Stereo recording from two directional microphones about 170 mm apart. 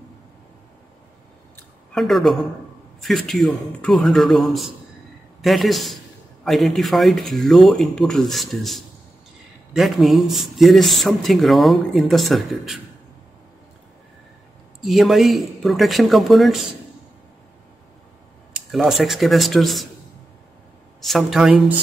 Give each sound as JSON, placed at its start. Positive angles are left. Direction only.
{"t": 2.0, "sound": "speech", "side_deg": 0}
{"t": 14.8, "sound": "speech", "side_deg": 0}
{"t": 18.5, "sound": "speech", "side_deg": 0}
{"t": 21.0, "sound": "speech", "side_deg": 0}